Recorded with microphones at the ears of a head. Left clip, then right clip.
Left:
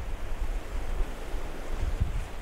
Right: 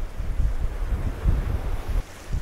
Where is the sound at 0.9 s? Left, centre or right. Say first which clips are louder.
Right 4 dB; right.